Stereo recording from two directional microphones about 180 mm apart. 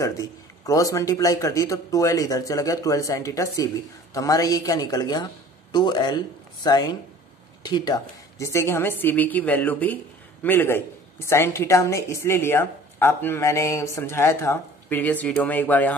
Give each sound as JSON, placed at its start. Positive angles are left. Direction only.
{"t": 0.0, "sound": "speech", "side_deg": 20}